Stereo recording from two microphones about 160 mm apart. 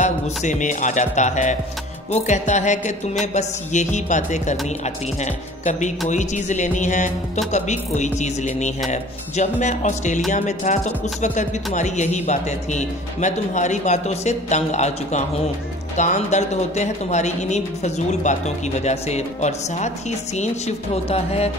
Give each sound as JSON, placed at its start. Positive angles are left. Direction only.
{"t": 0.0, "sound": "speech", "side_deg": 50}